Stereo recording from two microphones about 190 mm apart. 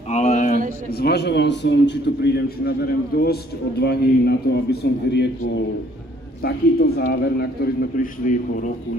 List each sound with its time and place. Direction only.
0.1 s a sound: 35° left (ahead or behind)
0.9 s a man's voice: 60° left (ahead or behind)
3.8 s a man's voice: 60° left (ahead or behind)
6.4 s a man's voice: 55° left (ahead or behind)